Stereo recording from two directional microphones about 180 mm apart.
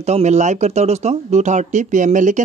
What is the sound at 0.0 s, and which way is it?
Speech, 40° right (ahead or behind).